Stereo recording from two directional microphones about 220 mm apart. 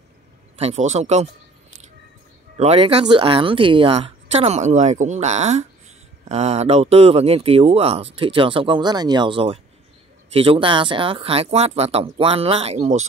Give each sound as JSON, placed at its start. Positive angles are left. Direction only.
{"t": 0.6, "sound": "speech", "side_deg": -30}
{"t": 2.5, "sound": "speech", "side_deg": -25}